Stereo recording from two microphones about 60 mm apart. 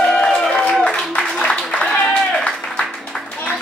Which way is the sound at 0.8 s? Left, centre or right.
Centre.